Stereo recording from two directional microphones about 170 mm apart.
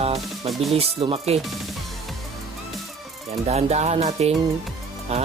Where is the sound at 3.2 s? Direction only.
40° right (ahead or behind).